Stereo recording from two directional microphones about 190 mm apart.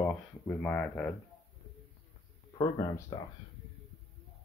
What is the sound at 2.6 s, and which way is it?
Speech, 15° left (ahead or behind).